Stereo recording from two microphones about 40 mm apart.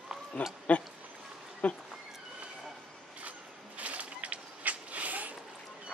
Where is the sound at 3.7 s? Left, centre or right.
Right.